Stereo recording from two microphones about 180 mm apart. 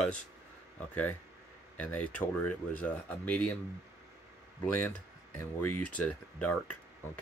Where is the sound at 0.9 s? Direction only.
10° left (ahead or behind).